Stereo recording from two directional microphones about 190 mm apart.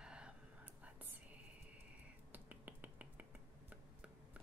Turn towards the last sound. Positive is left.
turn(degrees=-10)  # may be behind; listen again after turning